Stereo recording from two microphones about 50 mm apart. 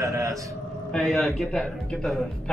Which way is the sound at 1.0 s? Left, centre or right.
Centre.